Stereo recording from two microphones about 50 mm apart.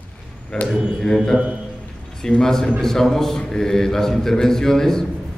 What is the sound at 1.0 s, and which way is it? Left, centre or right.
A man's voice, centre.